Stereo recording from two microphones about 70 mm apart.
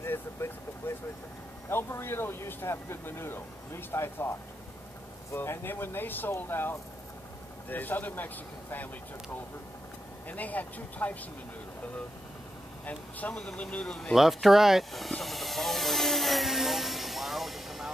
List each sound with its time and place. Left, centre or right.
0.0 s vehicle: left
1.7 s a man's voice: left
10.2 s a man's voice: left
12.8 s a man's voice: left
14.1 s vehicle: centre